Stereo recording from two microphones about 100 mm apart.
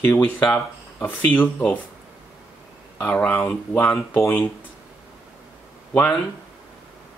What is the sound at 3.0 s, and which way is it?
Speech, 10° left (ahead or behind).